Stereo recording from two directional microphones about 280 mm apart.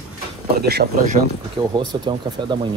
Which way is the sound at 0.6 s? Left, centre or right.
Right.